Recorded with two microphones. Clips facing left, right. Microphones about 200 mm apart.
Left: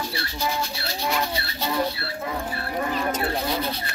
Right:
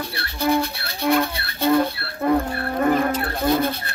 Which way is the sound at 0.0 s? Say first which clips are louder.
Right 4 dB; 60° right (ahead or behind).